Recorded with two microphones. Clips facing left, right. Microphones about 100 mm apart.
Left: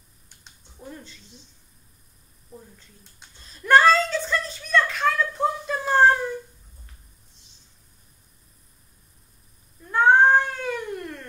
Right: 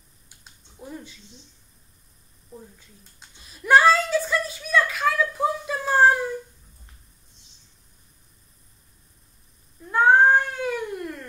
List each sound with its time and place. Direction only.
0.4 s typing: 10° right (ahead or behind)
3.2 s a sound: 10° right (ahead or behind)
9.8 s cat: 5° right (ahead or behind)